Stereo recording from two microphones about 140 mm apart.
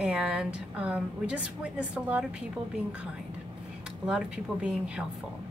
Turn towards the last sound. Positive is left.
turn(degrees=-10)  # may be behind; listen again after turning